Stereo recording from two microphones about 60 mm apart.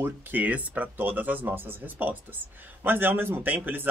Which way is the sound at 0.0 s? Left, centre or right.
Right.